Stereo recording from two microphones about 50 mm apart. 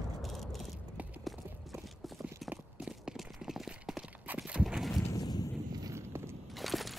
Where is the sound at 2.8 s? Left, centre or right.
Centre.